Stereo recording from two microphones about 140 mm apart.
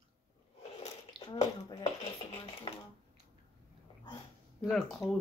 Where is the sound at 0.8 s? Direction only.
50° left (ahead or behind).